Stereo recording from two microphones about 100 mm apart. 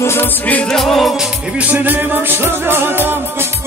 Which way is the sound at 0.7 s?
Centre (ahead or behind).